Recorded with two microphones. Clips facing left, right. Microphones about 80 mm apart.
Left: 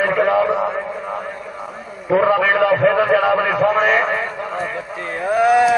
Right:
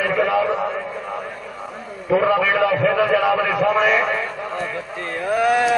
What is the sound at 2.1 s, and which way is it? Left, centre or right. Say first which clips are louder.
A man's voice: left 2 dB; left.